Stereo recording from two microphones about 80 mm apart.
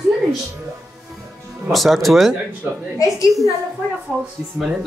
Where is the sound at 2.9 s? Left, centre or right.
Left.